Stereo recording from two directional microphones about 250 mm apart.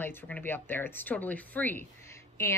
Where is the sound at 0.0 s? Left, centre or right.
Centre.